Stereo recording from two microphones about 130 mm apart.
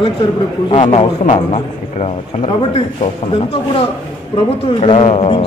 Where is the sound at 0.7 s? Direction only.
45° left (ahead or behind).